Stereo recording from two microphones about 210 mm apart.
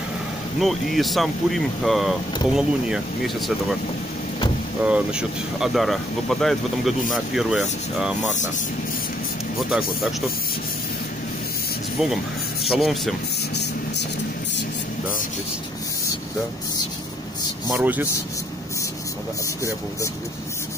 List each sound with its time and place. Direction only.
0.6 s speech: centre (ahead or behind)
4.8 s speech: 5° right (ahead or behind)
12.0 s speech: centre (ahead or behind)
17.7 s speech: 10° right (ahead or behind)